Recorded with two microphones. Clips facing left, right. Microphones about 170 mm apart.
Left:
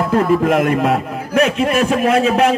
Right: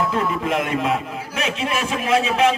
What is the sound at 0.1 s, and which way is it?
A man's voice, 50° left (ahead or behind).